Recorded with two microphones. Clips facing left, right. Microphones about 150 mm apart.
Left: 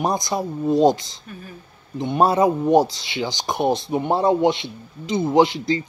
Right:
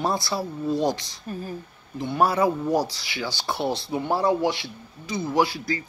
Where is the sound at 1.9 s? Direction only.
20° left (ahead or behind).